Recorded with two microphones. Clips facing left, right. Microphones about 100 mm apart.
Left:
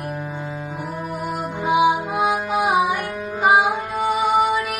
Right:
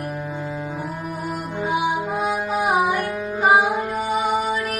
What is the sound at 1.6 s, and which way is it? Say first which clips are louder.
Music: left 5 dB; 15° left (ahead or behind).